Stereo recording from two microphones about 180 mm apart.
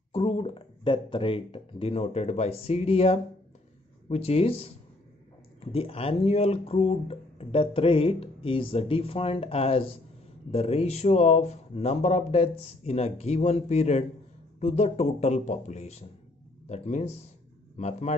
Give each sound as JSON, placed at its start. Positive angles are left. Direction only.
{"t": 0.1, "sound": "speech", "side_deg": 30}